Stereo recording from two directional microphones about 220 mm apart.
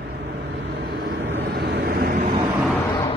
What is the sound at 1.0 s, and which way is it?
Vehicle, 45° right (ahead or behind).